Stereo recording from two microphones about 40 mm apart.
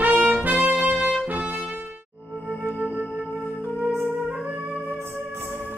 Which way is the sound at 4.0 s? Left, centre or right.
Right.